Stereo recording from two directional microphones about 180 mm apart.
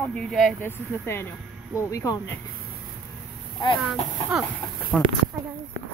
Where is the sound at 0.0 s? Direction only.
5° left (ahead or behind).